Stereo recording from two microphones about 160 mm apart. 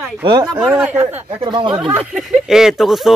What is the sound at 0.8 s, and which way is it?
Speech, 10° right (ahead or behind).